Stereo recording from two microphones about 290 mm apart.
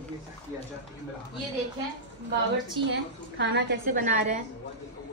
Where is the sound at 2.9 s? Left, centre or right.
Right.